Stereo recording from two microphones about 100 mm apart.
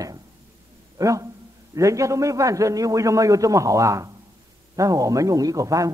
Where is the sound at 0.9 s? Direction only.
35° right (ahead or behind).